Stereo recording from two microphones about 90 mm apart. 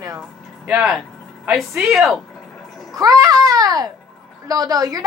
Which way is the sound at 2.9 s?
45° right (ahead or behind).